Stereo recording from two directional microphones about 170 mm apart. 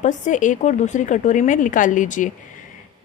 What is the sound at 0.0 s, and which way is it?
A woman's voice, 45° left (ahead or behind).